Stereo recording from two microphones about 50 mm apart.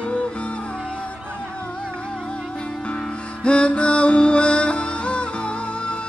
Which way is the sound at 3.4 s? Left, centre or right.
Left.